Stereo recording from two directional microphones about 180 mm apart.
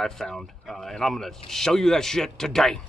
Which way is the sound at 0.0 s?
Centre (ahead or behind).